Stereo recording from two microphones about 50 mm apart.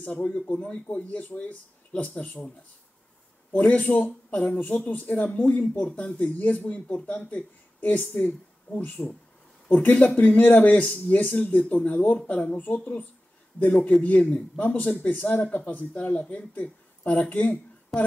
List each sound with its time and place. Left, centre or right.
0.0 s speech: left
3.5 s speech: left
14.3 s speech: left